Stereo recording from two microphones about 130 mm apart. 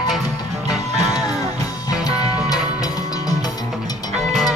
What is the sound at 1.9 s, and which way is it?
Music, 30° left (ahead or behind).